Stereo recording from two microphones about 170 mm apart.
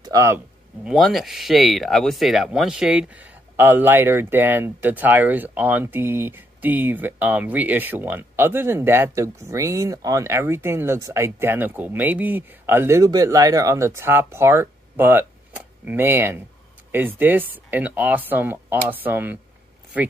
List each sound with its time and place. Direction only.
0.0 s speech: 20° right (ahead or behind)
0.8 s speech: centre (ahead or behind)